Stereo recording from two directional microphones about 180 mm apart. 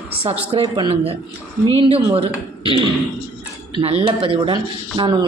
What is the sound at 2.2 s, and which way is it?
Speech, 30° right (ahead or behind).